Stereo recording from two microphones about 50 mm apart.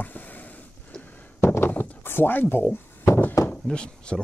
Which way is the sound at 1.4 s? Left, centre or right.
Left.